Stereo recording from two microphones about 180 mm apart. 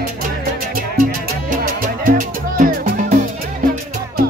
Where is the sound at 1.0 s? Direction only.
45° right (ahead or behind).